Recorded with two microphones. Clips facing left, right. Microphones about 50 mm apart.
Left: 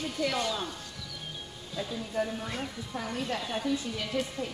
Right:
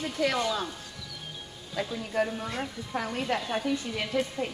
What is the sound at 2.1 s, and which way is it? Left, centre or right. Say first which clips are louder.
Speech: right 3 dB; right.